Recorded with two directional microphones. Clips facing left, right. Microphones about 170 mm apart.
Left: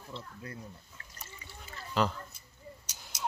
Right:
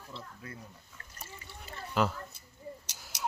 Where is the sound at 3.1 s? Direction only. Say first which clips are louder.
Even; 70° right (ahead or behind).